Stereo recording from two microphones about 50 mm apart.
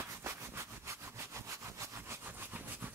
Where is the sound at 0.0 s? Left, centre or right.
Right.